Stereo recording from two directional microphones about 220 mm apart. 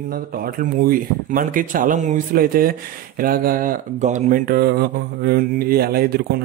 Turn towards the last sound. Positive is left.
turn(degrees=-45)  # may be behind; listen again after turning